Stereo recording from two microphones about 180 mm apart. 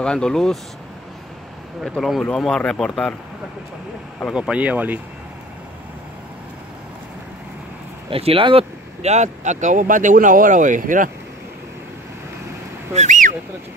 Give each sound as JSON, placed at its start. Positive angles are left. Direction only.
{"t": 0.0, "sound": "speech", "side_deg": 5}
{"t": 1.9, "sound": "speech", "side_deg": 0}
{"t": 4.3, "sound": "speech", "side_deg": -5}
{"t": 8.1, "sound": "speech", "side_deg": -30}
{"t": 12.9, "sound": "speech", "side_deg": -40}